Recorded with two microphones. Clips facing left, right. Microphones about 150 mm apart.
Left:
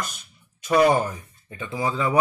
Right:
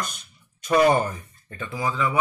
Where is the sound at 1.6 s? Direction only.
25° left (ahead or behind).